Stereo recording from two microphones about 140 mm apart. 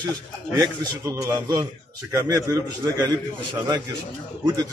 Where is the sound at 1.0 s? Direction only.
20° right (ahead or behind).